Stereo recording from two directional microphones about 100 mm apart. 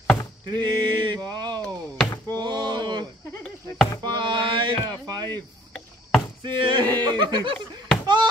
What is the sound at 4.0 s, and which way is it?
Music, 50° right (ahead or behind).